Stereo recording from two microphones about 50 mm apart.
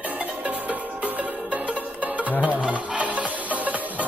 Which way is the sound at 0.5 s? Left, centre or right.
Right.